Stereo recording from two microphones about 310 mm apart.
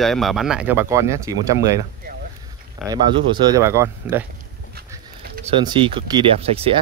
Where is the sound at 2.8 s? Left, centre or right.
Centre.